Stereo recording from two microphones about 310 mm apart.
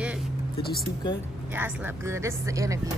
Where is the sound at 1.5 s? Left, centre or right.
Centre.